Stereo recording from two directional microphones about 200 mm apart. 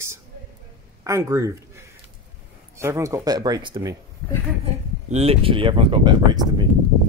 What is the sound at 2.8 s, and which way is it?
Speech, 15° right (ahead or behind).